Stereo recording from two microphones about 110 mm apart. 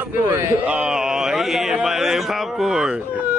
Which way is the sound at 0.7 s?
10° right (ahead or behind).